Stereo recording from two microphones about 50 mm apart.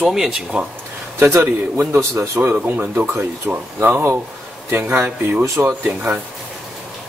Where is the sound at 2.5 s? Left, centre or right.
Right.